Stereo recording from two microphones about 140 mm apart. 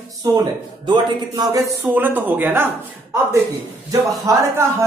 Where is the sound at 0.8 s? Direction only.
30° right (ahead or behind).